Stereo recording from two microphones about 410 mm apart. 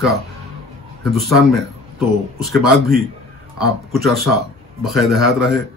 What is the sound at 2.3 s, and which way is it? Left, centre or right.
Speech, centre.